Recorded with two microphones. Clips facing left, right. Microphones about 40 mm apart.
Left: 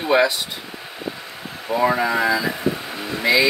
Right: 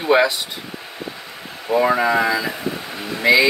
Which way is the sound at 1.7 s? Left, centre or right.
Centre.